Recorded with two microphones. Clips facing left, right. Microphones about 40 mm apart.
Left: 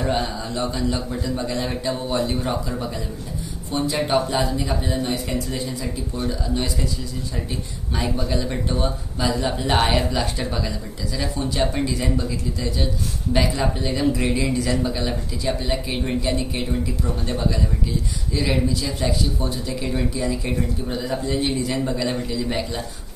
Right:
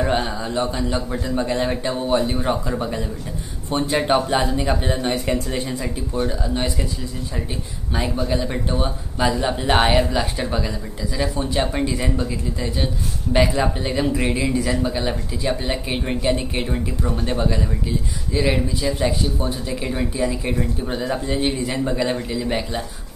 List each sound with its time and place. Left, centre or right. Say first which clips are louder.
0.0 s speech: right 2 dB; right
3.7 s speech: right 2 dB; right
6.1 s speech: right 3 dB; right
8.3 s speech: right 2 dB; centre
9.9 s speech: right 3 dB; centre